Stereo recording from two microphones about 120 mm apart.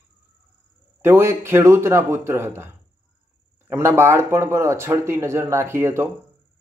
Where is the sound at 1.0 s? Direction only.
20° right (ahead or behind).